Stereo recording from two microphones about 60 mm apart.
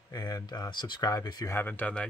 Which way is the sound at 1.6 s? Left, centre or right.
Left.